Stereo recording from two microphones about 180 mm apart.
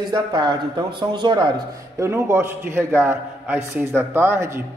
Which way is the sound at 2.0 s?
15° right (ahead or behind).